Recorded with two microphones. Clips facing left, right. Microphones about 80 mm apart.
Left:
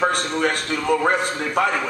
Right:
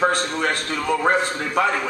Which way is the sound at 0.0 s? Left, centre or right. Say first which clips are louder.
Even; centre.